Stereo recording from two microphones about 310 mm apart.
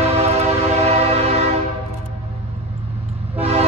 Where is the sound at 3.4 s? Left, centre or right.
Centre.